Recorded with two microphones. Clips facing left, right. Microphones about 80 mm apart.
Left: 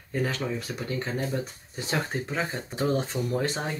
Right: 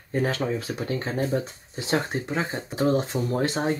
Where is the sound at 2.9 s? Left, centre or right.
Right.